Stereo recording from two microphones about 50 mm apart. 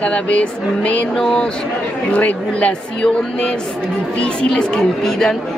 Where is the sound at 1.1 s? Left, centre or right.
Centre.